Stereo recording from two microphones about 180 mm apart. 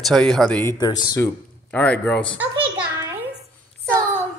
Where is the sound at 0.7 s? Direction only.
20° left (ahead or behind).